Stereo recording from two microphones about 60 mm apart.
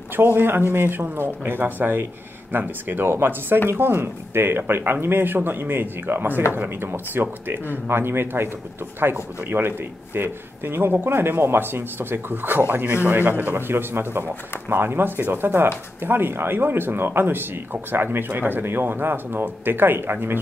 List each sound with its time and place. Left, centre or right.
0.1 s speech: right